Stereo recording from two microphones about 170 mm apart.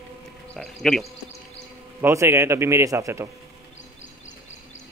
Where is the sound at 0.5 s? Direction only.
Centre (ahead or behind).